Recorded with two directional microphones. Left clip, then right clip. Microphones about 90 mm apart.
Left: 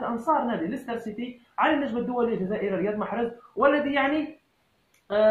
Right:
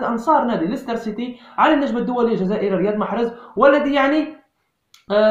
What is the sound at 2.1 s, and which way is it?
A man's voice, 15° right (ahead or behind).